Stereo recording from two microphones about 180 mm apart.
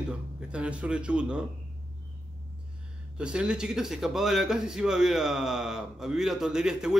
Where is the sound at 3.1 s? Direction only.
5° right (ahead or behind).